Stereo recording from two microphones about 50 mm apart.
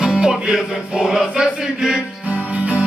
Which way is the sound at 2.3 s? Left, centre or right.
Right.